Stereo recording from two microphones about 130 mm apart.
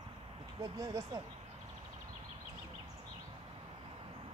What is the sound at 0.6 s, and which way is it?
Speech, 25° right (ahead or behind).